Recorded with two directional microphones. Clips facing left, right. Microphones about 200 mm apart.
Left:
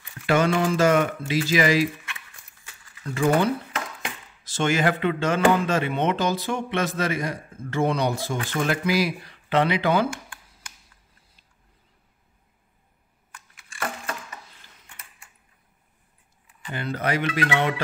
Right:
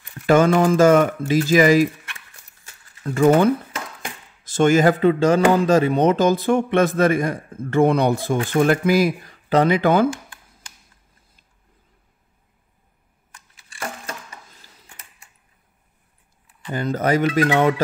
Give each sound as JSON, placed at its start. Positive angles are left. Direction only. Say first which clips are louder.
{"t": 0.0, "sound": "speech", "louder": "right 6 dB", "side_deg": -45}
{"t": 4.6, "sound": "speech", "louder": "right 7 dB", "side_deg": -45}
{"t": 14.5, "sound": "a sound", "louder": "right 3 dB", "side_deg": -40}
{"t": 16.7, "sound": "speech", "louder": "right 6 dB", "side_deg": -40}